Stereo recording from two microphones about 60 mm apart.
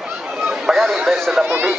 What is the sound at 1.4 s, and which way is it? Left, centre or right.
Speech, right.